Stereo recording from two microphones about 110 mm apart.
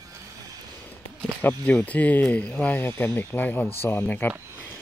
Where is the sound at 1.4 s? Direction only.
15° left (ahead or behind).